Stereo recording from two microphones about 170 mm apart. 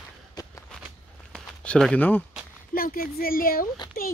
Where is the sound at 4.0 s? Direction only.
60° left (ahead or behind).